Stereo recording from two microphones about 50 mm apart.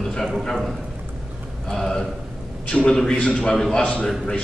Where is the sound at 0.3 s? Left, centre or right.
Centre; by 3.5 s left.